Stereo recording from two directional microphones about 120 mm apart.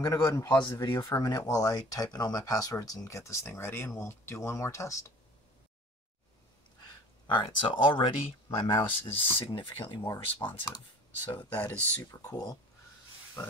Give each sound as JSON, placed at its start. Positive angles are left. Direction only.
{"t": 0.0, "sound": "speech", "side_deg": 30}
{"t": 7.2, "sound": "speech", "side_deg": 40}
{"t": 11.3, "sound": "speech", "side_deg": 15}